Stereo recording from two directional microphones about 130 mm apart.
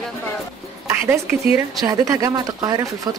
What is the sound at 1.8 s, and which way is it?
Speech, 25° right (ahead or behind).